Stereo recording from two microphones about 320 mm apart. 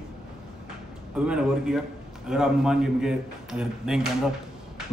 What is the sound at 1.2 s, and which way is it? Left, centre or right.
A man's voice, centre.